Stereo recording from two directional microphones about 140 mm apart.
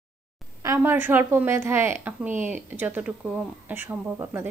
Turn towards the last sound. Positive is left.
turn(degrees=-20)  # may be behind; listen again after turning